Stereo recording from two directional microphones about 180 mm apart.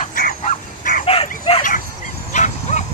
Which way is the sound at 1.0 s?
30° left (ahead or behind).